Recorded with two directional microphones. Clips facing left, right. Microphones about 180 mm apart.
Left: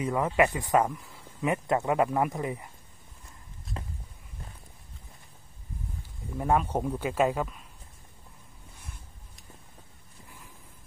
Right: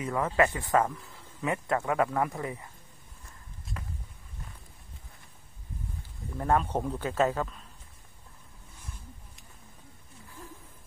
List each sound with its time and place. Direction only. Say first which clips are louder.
0.0 s speech: left 2 dB; 20° left (ahead or behind)
6.3 s speech: left 1 dB; 10° left (ahead or behind)